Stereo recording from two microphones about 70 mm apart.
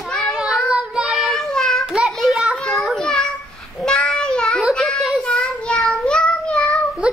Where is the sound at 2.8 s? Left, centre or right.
Centre.